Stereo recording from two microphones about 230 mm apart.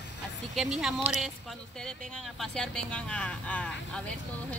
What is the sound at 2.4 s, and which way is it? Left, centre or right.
Speech, centre.